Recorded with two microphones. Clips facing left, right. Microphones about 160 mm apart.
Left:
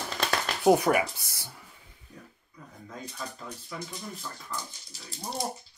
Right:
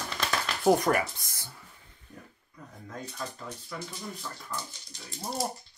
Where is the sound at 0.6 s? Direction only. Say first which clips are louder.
Left 2 dB; 5° left (ahead or behind).